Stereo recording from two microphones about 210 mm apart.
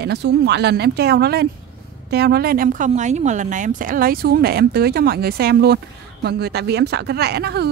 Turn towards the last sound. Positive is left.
turn(degrees=-50)  # may be behind; listen again after turning